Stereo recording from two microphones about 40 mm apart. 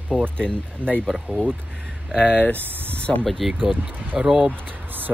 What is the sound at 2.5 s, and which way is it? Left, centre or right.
Speech, right.